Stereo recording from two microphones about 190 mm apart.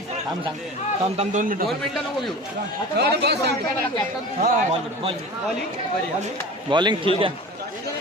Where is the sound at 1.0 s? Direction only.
35° right (ahead or behind).